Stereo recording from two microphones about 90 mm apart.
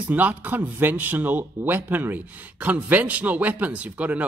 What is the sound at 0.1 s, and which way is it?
Speech, 20° right (ahead or behind).